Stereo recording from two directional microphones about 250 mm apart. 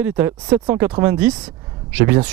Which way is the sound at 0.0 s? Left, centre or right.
Centre.